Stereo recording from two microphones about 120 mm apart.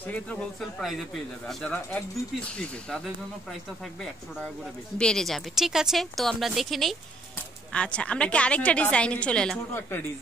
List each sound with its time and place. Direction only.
0.0 s speech: 10° left (ahead or behind)
1.7 s a woman's voice: 15° left (ahead or behind)
4.9 s a woman's voice: 5° left (ahead or behind)
9.8 s speech: 20° left (ahead or behind)